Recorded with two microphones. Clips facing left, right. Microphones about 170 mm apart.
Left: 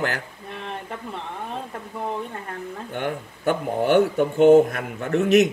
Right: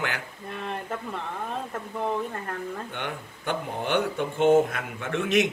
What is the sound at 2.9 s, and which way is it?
A man's voice, 45° left (ahead or behind).